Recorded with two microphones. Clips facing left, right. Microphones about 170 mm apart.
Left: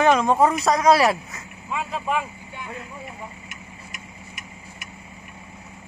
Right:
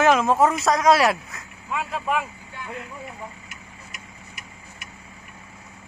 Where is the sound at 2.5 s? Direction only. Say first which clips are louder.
Even; 15° left (ahead or behind).